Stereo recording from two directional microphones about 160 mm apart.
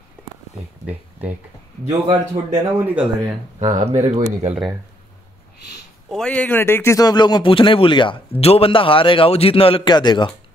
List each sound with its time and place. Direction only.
1.9 s speech: 45° right (ahead or behind)
2.8 s speech: 10° right (ahead or behind)
3.5 s speech: 45° right (ahead or behind)
6.0 s a man's voice: 5° left (ahead or behind); by 10.3 s 30° left (ahead or behind)